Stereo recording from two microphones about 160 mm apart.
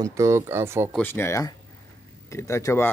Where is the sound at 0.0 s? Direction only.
20° right (ahead or behind).